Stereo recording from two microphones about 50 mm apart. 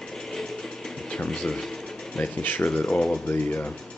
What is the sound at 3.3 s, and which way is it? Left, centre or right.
Speech, left.